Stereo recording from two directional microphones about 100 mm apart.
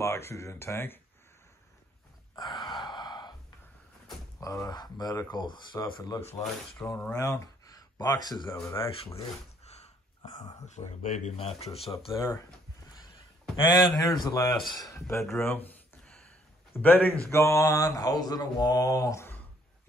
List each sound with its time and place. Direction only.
0.0 s speech: 30° left (ahead or behind)
2.6 s sigh: 50° left (ahead or behind)
4.4 s speech: 35° left (ahead or behind)
6.1 s speech: 25° left (ahead or behind)
6.4 s speech: 10° left (ahead or behind)
7.2 s speech: 35° left (ahead or behind)
8.7 s speech: 65° left (ahead or behind)
10.8 s speech: 80° left
11.3 s speech: 90° left
13.6 s speech: 45° left (ahead or behind)
14.5 s speech: centre (ahead or behind)
14.9 s speech: 30° left (ahead or behind)
15.3 s a sound: 20° left (ahead or behind)
16.7 s speech: 20° left (ahead or behind)